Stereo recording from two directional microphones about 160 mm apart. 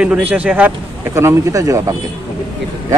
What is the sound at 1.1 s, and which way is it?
Speech, 20° right (ahead or behind).